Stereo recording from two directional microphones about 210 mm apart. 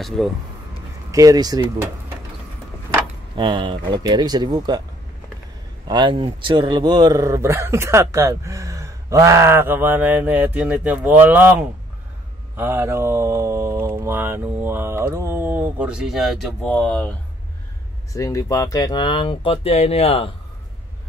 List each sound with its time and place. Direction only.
0.2 s speech: 5° left (ahead or behind)
1.1 s speech: 15° right (ahead or behind)
3.3 s speech: 25° right (ahead or behind)
5.9 s speech: 20° right (ahead or behind); by 20.2 s 30° left (ahead or behind)